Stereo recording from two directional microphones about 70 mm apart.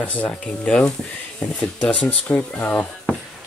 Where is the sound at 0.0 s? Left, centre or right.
Left.